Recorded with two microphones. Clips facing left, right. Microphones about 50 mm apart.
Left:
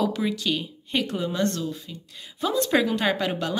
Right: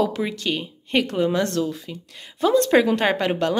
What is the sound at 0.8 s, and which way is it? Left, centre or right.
Speech, right.